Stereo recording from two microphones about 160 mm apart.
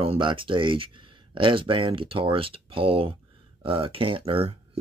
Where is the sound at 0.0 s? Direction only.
35° right (ahead or behind).